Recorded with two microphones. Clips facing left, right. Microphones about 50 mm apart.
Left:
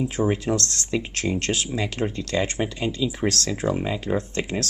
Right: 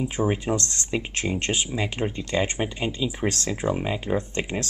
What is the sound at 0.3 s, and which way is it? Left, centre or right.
Speech, centre.